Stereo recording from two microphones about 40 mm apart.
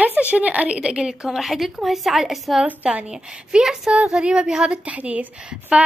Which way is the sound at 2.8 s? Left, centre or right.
Right.